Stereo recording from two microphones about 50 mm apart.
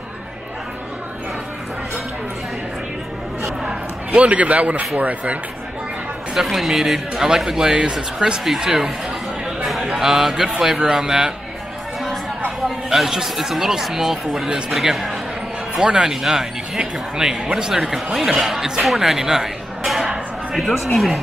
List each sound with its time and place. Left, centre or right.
3.6 s a man's voice: right
6.3 s a man's voice: centre
12.6 s a man's voice: centre
18.9 s a sound: centre